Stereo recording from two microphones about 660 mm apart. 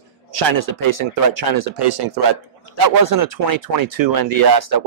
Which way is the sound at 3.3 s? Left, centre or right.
Right.